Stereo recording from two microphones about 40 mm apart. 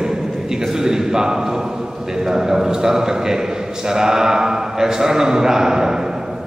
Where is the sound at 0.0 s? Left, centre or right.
Centre.